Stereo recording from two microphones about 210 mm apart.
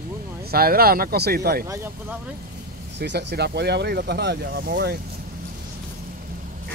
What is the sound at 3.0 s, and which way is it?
Speech, 55° right (ahead or behind).